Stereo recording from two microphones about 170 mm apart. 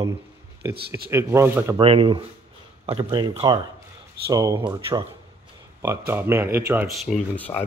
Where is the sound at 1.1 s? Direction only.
15° right (ahead or behind).